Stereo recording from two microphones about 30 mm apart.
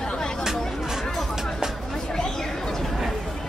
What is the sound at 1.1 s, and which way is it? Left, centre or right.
Music, centre.